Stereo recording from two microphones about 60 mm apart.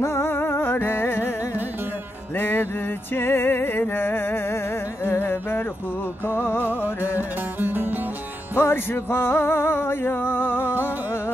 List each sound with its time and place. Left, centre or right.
0.0 s music: left
2.3 s music: left
7.2 s music: right
8.5 s music: left